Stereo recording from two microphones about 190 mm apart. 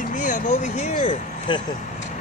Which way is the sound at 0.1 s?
45° left (ahead or behind).